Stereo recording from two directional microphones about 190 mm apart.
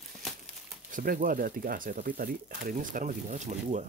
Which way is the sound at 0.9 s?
45° right (ahead or behind).